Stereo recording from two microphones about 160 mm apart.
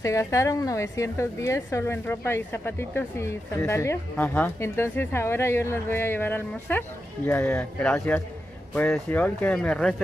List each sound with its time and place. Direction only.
0.0 s a woman's voice: 20° left (ahead or behind); by 10.0 s 5° left (ahead or behind)